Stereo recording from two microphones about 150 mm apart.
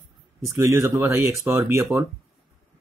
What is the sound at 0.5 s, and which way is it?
Speech, 20° right (ahead or behind).